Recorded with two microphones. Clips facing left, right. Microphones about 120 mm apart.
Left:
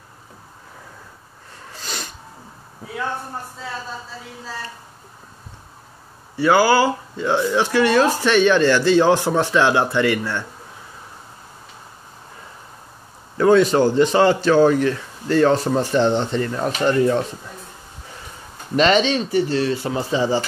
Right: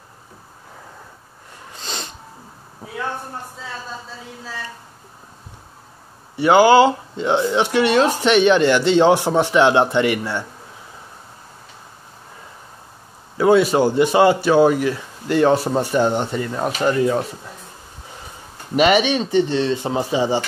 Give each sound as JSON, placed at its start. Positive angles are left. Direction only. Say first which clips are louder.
{"t": 1.7, "sound": "snort", "louder": "right 1 dB", "side_deg": -25}
{"t": 6.3, "sound": "speech", "louder": "right 4 dB", "side_deg": -20}
{"t": 13.4, "sound": "speech", "louder": "even", "side_deg": -10}
{"t": 18.8, "sound": "speech", "louder": "right 1 dB", "side_deg": -10}